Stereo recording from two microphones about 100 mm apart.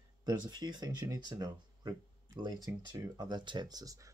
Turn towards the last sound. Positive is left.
turn(degrees=-35)  # may be behind; listen again after turning